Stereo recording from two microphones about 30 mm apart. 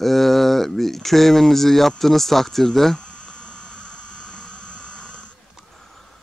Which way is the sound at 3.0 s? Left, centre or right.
Left.